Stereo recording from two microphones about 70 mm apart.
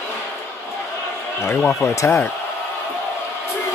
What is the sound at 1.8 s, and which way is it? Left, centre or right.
Speech, left.